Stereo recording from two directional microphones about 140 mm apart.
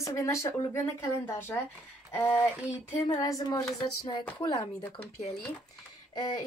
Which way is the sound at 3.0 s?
25° left (ahead or behind).